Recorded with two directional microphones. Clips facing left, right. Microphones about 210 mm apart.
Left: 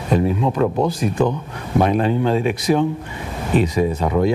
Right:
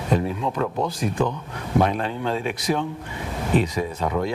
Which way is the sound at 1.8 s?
10° left (ahead or behind).